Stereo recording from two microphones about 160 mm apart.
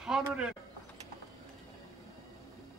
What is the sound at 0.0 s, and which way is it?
Speech, 5° right (ahead or behind).